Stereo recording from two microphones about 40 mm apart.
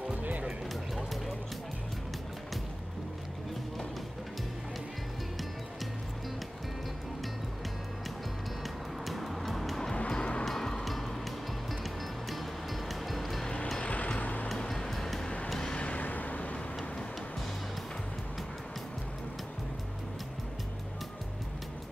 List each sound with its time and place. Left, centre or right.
0.2 s music: right
9.0 s music: centre
9.9 s music: left
10.4 s music: centre
13.9 s vehicle: left
14.6 s music: centre
15.2 s vehicle: left
16.0 s vehicle: left